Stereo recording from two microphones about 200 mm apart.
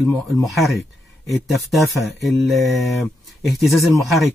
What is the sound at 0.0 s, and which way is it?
Speech, 5° left (ahead or behind).